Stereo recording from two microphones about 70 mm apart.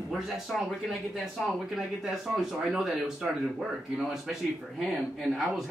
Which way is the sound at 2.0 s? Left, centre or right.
Centre.